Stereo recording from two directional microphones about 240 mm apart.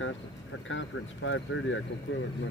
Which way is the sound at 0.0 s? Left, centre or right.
Left.